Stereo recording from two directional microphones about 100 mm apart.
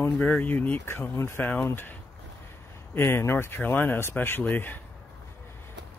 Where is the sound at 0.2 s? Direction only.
15° left (ahead or behind).